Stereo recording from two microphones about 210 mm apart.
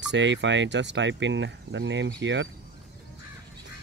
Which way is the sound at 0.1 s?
60° right (ahead or behind).